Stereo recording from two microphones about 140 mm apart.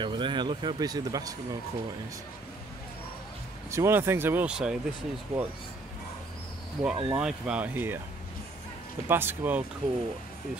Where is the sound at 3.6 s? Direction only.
20° right (ahead or behind).